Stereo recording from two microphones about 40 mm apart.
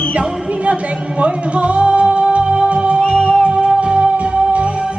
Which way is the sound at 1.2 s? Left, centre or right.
Right.